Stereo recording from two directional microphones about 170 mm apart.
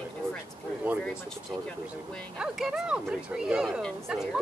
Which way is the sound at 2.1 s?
5° right (ahead or behind).